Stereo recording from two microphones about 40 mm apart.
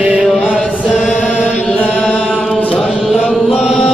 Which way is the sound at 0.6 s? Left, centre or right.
Centre.